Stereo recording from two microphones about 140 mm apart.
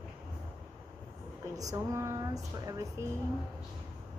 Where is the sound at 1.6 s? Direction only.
25° right (ahead or behind).